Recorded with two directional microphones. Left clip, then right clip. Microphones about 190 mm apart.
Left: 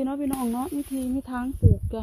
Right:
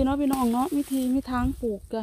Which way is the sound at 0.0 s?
25° right (ahead or behind).